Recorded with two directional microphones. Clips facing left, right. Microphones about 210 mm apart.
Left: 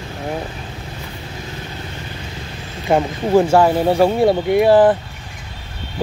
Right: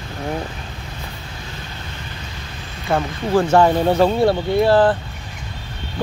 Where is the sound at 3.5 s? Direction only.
10° left (ahead or behind).